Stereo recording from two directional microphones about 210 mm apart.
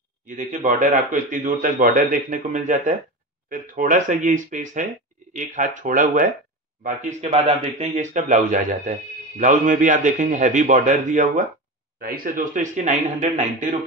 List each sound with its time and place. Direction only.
0.4 s a man's voice: 35° right (ahead or behind)